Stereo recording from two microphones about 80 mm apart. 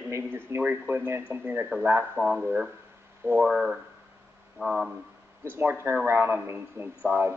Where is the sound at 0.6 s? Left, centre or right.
Right.